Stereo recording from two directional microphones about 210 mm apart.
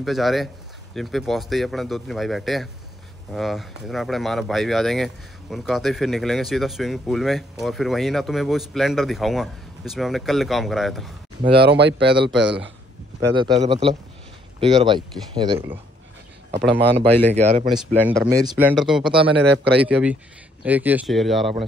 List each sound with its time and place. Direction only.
0.0 s speech: centre (ahead or behind)
11.5 s speech: 50° right (ahead or behind)
13.2 s speech: 20° right (ahead or behind)
17.3 s speech: 35° right (ahead or behind)
17.6 s speech: centre (ahead or behind)
18.3 s speech: 15° right (ahead or behind)
18.7 s speech: centre (ahead or behind)
19.3 s speech: 55° right (ahead or behind)
19.8 s speech: 5° right (ahead or behind)